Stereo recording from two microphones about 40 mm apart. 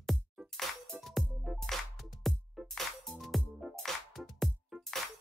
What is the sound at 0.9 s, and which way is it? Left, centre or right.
Music, right.